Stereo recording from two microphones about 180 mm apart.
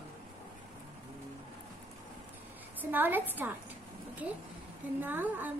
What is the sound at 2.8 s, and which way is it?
Speech, 10° right (ahead or behind).